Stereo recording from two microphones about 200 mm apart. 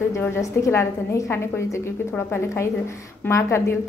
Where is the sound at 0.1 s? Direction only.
15° left (ahead or behind).